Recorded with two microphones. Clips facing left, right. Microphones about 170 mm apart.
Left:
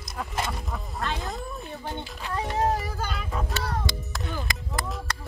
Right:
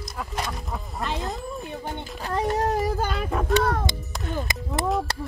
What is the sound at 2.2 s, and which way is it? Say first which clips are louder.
Speech: right 7 dB; 40° right (ahead or behind).